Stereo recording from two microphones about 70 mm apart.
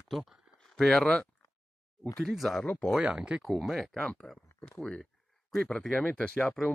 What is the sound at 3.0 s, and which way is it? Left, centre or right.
Speech, centre.